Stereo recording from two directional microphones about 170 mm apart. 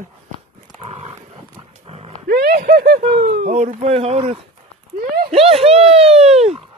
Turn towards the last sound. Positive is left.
turn(degrees=-40)  # may be behind; listen again after turning